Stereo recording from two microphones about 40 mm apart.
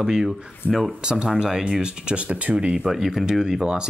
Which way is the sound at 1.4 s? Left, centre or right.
Centre.